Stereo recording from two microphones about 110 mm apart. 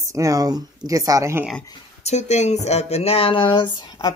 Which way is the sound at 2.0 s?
90° left.